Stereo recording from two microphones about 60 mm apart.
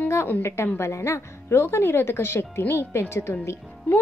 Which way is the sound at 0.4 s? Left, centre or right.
Left.